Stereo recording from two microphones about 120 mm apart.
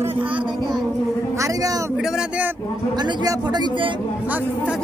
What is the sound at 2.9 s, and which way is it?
Speech, 35° right (ahead or behind).